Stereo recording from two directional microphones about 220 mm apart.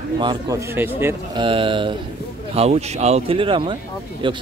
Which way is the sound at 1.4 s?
25° right (ahead or behind).